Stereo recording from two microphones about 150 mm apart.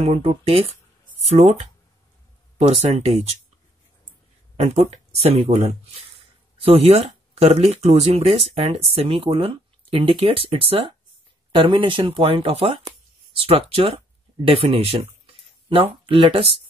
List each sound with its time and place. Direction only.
0.0 s speech: 40° right (ahead or behind)
2.8 s speech: 45° right (ahead or behind)
4.6 s speech: 45° right (ahead or behind)